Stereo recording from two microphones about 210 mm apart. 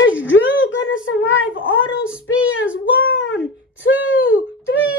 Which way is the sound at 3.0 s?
65° left (ahead or behind).